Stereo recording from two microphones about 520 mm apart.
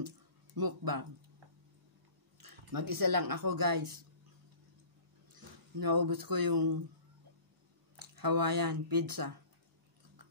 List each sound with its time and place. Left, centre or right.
0.6 s speech: right
2.3 s speech: right
5.8 s speech: right
7.9 s speech: right